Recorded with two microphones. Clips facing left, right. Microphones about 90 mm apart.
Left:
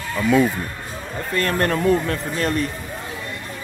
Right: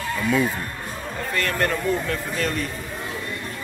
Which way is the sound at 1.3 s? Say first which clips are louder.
Left 3 dB; 35° left (ahead or behind).